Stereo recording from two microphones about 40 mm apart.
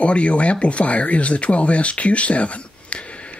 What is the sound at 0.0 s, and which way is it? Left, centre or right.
Speech, left.